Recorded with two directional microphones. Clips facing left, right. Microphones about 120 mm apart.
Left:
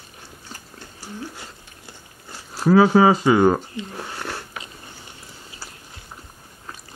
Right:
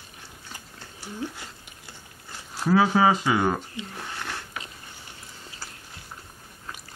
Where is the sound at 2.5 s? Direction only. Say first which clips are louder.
Left 6 dB; 40° left (ahead or behind).